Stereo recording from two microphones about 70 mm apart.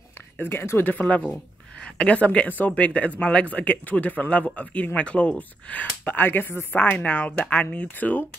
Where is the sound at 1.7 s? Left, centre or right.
Centre.